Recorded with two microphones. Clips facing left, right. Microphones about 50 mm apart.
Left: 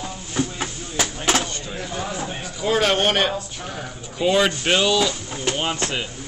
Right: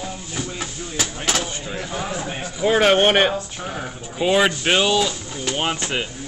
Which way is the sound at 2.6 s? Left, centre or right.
Right.